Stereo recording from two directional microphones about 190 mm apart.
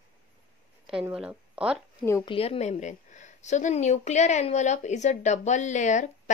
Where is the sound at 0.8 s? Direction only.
5° right (ahead or behind).